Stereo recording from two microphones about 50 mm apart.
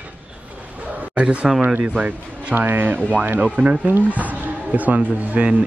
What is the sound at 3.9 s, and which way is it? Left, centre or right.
Speech, right.